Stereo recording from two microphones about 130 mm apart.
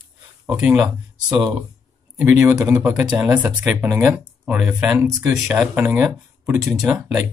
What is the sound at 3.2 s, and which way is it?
Speech, 10° right (ahead or behind).